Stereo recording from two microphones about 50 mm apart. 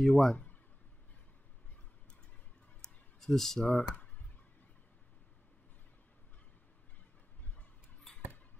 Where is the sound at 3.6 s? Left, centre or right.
Left.